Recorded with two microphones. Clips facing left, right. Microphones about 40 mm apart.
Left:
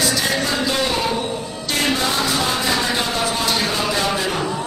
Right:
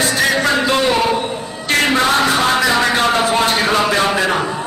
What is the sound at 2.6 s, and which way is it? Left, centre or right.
A man's voice, right.